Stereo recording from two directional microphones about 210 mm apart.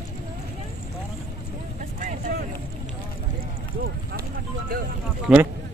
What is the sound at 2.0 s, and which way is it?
Speech, 45° right (ahead or behind).